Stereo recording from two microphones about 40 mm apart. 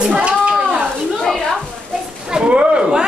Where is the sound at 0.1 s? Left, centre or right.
Right.